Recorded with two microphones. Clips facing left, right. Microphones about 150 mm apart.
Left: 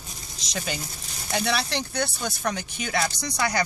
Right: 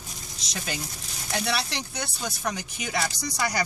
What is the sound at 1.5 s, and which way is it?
Speech, 5° right (ahead or behind).